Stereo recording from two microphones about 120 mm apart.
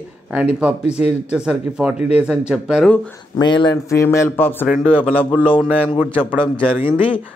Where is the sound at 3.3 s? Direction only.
40° left (ahead or behind).